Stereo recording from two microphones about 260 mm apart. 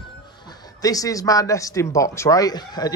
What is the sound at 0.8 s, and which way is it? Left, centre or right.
Speech, centre.